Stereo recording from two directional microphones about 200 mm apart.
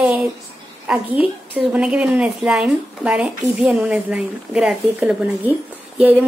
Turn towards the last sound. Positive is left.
turn(degrees=-10)  # may be behind; listen again after turning